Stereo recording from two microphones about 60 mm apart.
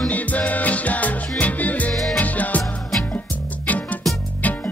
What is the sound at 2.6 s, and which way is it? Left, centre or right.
Music, centre.